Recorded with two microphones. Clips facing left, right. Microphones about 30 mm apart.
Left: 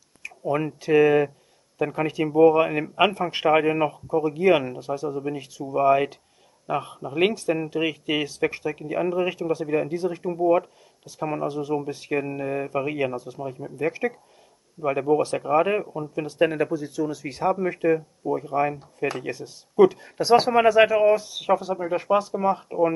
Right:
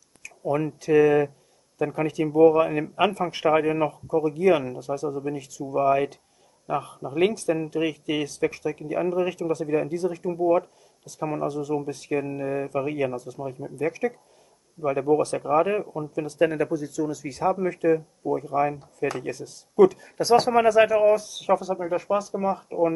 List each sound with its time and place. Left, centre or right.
0.5 s speech: left
5.7 s speech: left